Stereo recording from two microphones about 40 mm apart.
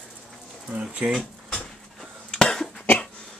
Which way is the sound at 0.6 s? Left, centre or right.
Right.